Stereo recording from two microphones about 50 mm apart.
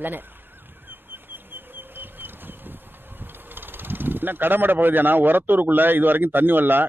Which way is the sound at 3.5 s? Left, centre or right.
Right.